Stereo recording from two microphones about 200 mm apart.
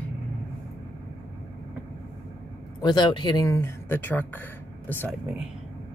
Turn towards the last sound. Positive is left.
turn(degrees=-10)  # may be behind; listen again after turning